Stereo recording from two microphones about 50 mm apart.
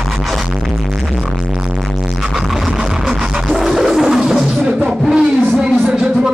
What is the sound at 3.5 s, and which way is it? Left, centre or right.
Music, centre.